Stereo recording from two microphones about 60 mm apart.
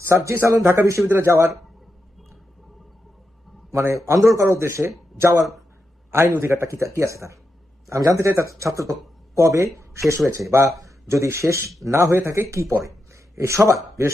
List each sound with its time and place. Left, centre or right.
0.0 s a man's voice: right
3.7 s a man's voice: right
7.9 s speech: right
11.1 s a man's voice: right
12.4 s a man's voice: right